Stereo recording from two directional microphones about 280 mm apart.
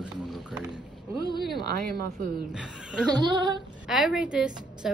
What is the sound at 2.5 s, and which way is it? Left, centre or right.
Speech, centre.